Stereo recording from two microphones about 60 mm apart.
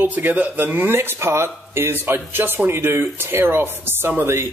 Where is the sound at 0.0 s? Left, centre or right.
Right.